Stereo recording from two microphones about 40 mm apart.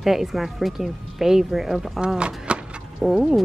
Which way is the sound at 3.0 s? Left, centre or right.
Centre.